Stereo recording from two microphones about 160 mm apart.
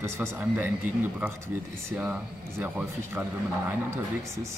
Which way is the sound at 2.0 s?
10° right (ahead or behind).